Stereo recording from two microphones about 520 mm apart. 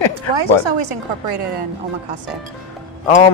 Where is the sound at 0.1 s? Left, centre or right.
Right.